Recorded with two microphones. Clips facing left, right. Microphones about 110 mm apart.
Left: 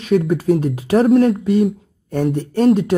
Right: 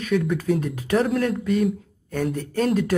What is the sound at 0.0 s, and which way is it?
Speech, 40° left (ahead or behind).